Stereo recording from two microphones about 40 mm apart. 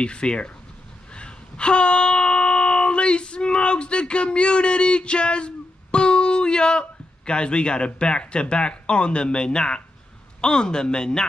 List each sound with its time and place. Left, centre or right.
0.0 s speech: left
1.1 s a sound: left
10.4 s speech: centre